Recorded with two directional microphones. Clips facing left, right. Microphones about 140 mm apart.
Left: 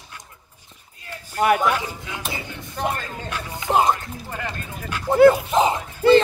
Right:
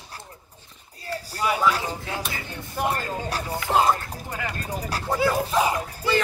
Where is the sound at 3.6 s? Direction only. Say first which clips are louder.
Left 2 dB; 20° left (ahead or behind).